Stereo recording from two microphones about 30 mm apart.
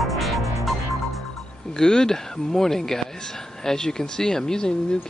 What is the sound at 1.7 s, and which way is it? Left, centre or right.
Speech, left.